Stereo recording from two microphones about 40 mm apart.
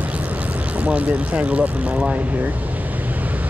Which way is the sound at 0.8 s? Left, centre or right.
Right.